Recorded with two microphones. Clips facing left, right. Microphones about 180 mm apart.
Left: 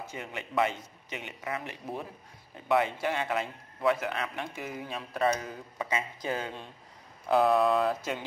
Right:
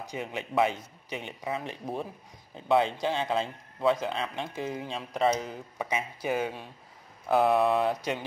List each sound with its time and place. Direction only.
0.0 s speech: 15° right (ahead or behind)
1.2 s a man's voice: 25° right (ahead or behind)
7.4 s a man's voice: 20° right (ahead or behind)